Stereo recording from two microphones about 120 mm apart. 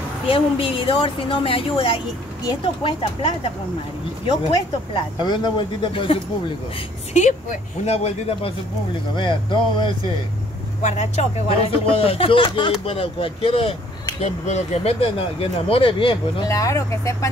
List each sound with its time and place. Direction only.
0.3 s speech: 50° left (ahead or behind)
4.3 s speech: 40° left (ahead or behind)
7.2 s speech: 80° left
7.8 s speech: 60° left (ahead or behind)
9.1 s speech: 40° left (ahead or behind)
10.8 s speech: 75° left (ahead or behind); by 13.7 s 50° left (ahead or behind)
14.2 s speech: 65° left (ahead or behind); by 16.4 s 45° left (ahead or behind)
16.4 s speech: 25° left (ahead or behind)